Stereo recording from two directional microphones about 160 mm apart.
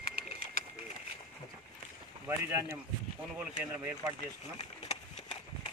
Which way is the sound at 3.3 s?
10° right (ahead or behind).